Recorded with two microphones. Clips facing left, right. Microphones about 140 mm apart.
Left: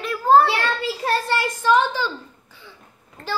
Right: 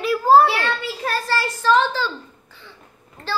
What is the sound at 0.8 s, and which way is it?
A child's voice, 30° left (ahead or behind).